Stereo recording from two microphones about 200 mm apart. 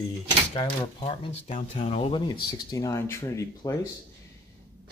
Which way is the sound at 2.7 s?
15° left (ahead or behind).